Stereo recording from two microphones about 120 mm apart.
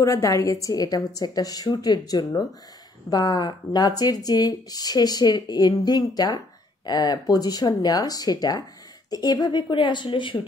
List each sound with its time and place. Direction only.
0.0 s speech: 25° left (ahead or behind); by 10.4 s 45° left (ahead or behind)